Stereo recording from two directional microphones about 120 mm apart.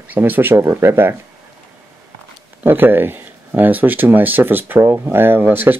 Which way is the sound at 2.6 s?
15° right (ahead or behind).